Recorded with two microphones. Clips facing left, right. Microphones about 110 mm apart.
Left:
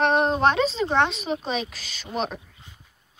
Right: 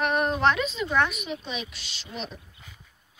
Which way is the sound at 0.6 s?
30° left (ahead or behind).